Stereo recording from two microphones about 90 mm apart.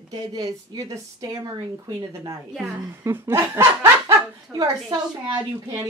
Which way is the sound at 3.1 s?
25° right (ahead or behind).